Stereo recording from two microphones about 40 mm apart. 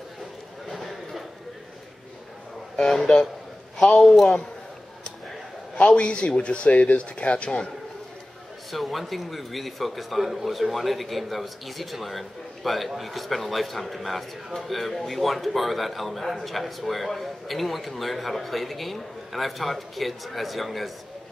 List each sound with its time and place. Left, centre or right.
0.7 s a sound: centre
2.8 s a man's voice: centre
5.8 s speech: left
8.7 s speech: centre